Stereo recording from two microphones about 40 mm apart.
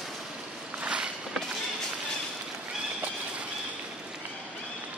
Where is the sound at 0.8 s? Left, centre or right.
Right.